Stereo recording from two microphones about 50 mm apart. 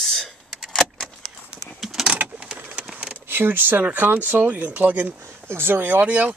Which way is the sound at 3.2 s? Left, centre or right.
Right.